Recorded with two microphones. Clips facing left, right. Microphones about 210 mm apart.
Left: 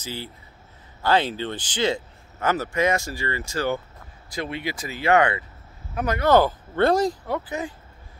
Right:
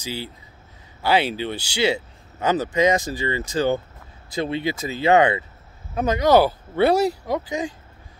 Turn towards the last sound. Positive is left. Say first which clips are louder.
# right 3 dB
turn(degrees=-15)  # may be behind; listen again after turning